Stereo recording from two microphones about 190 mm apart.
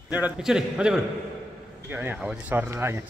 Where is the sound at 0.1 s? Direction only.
5° right (ahead or behind).